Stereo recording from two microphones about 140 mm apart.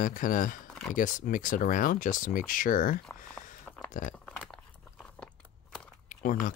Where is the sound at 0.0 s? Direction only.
75° left (ahead or behind).